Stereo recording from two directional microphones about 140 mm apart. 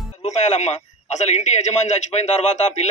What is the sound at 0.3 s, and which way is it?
A man's voice, 55° left (ahead or behind).